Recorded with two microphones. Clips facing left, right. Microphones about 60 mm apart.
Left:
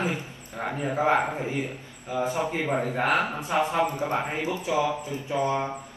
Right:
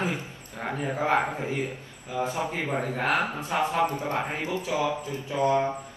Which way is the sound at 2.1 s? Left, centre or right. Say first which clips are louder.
Left 2 dB; left.